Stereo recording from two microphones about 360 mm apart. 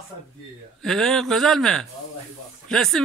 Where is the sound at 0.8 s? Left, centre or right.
Centre.